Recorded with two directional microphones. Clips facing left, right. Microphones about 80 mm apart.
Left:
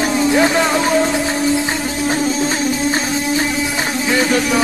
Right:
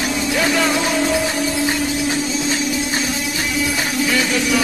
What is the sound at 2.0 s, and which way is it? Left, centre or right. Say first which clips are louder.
Music: left 3 dB; left.